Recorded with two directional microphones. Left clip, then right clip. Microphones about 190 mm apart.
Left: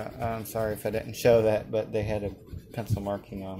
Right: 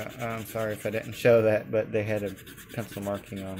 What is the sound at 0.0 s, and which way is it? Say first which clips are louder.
Speech: left 1 dB; 5° right (ahead or behind).